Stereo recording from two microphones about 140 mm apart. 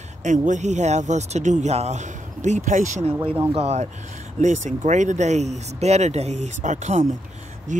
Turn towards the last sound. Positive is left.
turn(degrees=-60)  # may be behind; listen again after turning